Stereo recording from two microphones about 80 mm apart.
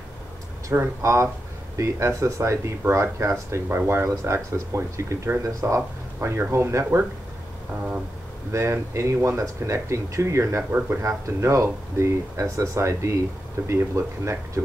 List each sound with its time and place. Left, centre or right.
0.7 s speech: right
8.5 s speech: right